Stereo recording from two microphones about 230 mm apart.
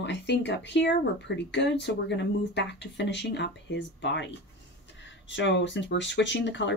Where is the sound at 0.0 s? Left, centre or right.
Left.